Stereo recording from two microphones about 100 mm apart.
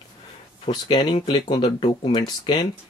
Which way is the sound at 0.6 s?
50° left (ahead or behind).